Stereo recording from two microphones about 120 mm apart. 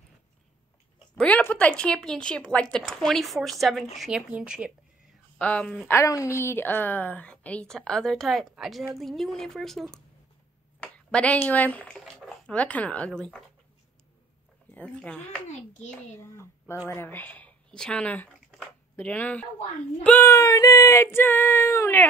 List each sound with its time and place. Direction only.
1.1 s a woman's voice: 10° left (ahead or behind); by 4.7 s 10° right (ahead or behind)
5.4 s a woman's voice: 10° left (ahead or behind)
5.9 s a woman's voice: 25° left (ahead or behind)
12.0 s a sound: centre (ahead or behind)
12.4 s a woman's voice: 10° left (ahead or behind)
14.7 s a woman's voice: 10° left (ahead or behind)
15.4 s a child's voice: 90° left
16.2 s child singing: 20° left (ahead or behind)
16.9 s a woman's voice: 15° left (ahead or behind)
20.2 s child singing: 25° left (ahead or behind)